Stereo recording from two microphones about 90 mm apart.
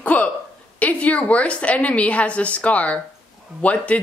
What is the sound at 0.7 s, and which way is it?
A woman's voice, 15° left (ahead or behind).